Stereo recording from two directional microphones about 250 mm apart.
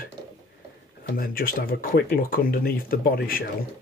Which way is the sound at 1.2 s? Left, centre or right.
Left.